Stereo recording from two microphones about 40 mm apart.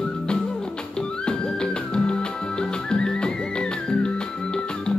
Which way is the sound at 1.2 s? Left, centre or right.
Left.